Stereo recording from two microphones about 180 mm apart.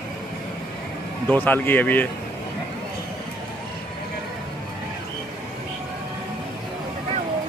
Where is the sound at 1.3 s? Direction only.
10° left (ahead or behind).